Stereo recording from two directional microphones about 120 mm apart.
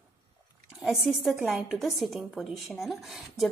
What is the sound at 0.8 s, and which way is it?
A woman's voice, centre (ahead or behind).